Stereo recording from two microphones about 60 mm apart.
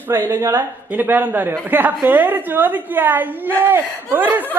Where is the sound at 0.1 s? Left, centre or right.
Right.